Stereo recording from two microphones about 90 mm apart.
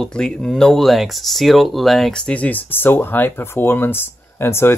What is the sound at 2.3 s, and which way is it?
Speech, 15° left (ahead or behind).